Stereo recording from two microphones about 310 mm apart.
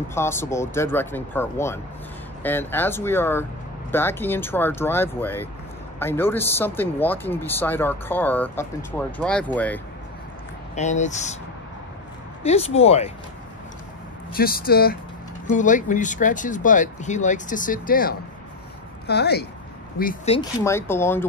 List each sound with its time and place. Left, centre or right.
0.1 s speech: centre
10.7 s speech: left
12.4 s speech: centre
14.3 s a woman's voice: left
20.3 s speech: centre